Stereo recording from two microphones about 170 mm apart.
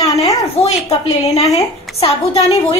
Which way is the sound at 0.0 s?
20° left (ahead or behind).